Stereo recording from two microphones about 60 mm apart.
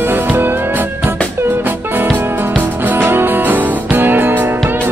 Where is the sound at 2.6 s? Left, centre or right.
Right.